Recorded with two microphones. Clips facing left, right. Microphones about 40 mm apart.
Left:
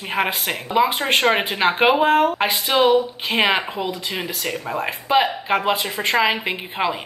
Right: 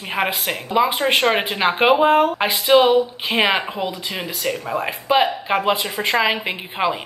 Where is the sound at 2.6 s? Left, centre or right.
Right.